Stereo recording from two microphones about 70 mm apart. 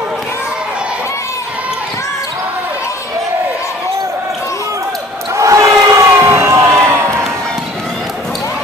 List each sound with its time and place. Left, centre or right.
5.3 s crowd: right